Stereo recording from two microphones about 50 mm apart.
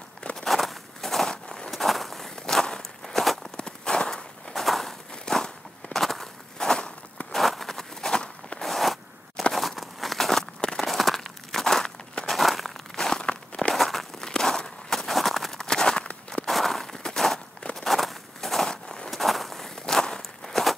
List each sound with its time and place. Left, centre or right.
0.4 s walk: centre
1.3 s a sound: centre
1.7 s walk: centre
3.5 s walk: centre
5.3 s a sound: centre
5.9 s walk: centre
7.3 s a sound: centre
12.3 s crumpling: centre
12.9 s walk: centre
13.7 s a sound: centre
15.6 s walk: centre
16.4 s walk: centre
19.0 s walk: centre